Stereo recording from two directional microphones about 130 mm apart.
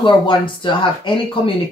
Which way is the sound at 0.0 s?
40° left (ahead or behind).